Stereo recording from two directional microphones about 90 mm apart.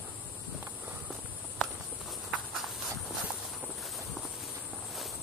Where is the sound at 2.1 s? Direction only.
Centre (ahead or behind).